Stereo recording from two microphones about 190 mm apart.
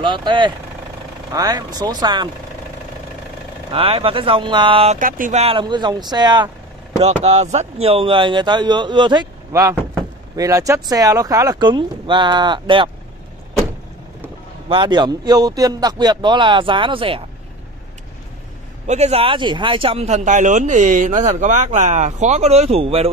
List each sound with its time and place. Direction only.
0.0 s speech: 25° right (ahead or behind)
3.7 s speech: 30° right (ahead or behind)
4.9 s speech: 45° right (ahead or behind); by 6.5 s 20° right (ahead or behind)
7.0 s speech: 35° right (ahead or behind)
14.7 s speech: 25° right (ahead or behind)
18.9 s a man's voice: 35° right (ahead or behind)